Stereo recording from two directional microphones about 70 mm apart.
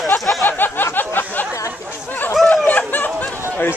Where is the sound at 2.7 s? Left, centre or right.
Left.